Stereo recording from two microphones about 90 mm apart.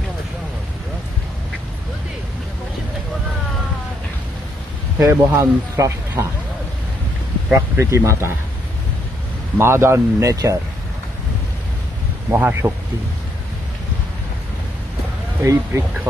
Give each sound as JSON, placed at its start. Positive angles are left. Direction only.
{"t": 4.9, "sound": "speech", "side_deg": -30}
{"t": 7.5, "sound": "speech", "side_deg": -30}
{"t": 9.6, "sound": "speech", "side_deg": -30}
{"t": 10.3, "sound": "speech", "side_deg": -40}
{"t": 12.3, "sound": "speech", "side_deg": -25}
{"t": 15.4, "sound": "speech", "side_deg": -30}